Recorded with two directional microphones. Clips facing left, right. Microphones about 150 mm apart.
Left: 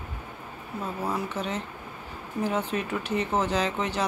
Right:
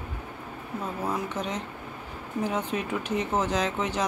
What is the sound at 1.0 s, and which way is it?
Speech, 10° left (ahead or behind).